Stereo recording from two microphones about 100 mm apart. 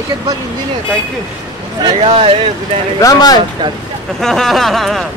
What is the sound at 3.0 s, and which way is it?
Speech, 35° left (ahead or behind).